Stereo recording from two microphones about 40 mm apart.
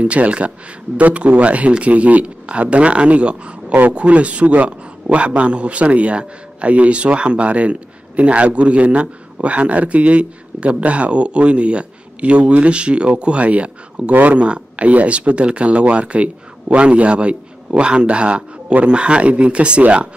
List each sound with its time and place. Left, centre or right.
0.0 s a man's voice: right
14.1 s a man's voice: right
14.4 s speech: right